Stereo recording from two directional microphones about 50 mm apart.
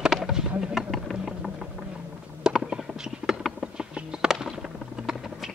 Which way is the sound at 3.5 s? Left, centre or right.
Centre.